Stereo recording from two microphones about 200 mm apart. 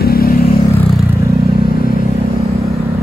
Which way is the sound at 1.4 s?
50° left (ahead or behind).